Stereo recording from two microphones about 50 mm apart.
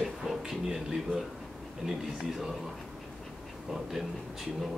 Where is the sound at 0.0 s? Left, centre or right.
Centre.